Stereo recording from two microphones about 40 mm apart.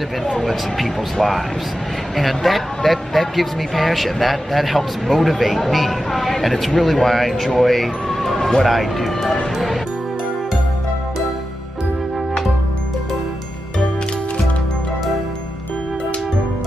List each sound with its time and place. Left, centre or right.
0.2 s speech: centre